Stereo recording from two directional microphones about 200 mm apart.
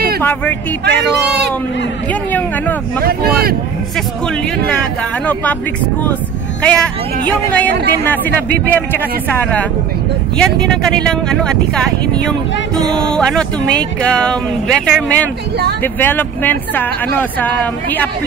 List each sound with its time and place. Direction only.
0.2 s speech: 10° left (ahead or behind)
0.8 s a man's voice: 55° right (ahead or behind)
3.0 s speech: 50° right (ahead or behind)
5.2 s speech: 5° left (ahead or behind)
6.6 s speech: 5° left (ahead or behind)
12.9 s speech: 5° left (ahead or behind)